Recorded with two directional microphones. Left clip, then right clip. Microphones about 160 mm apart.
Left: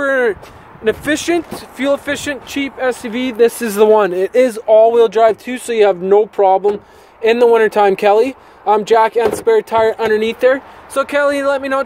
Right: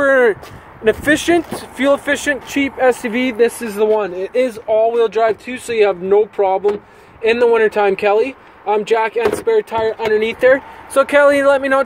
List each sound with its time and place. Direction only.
0.0 s a sound: centre (ahead or behind)
0.8 s speech: 5° left (ahead or behind)
3.1 s speech: 15° left (ahead or behind)
3.5 s speech: 90° left; by 4.3 s 65° left (ahead or behind)
4.3 s speech: 40° left (ahead or behind)
9.9 s speech: 70° left (ahead or behind)
10.9 s speech: 5° right (ahead or behind)